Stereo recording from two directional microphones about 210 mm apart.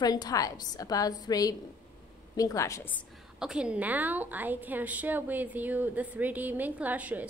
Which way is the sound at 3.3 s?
5° right (ahead or behind).